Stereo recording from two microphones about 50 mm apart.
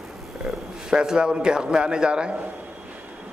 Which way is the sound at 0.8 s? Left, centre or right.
Centre.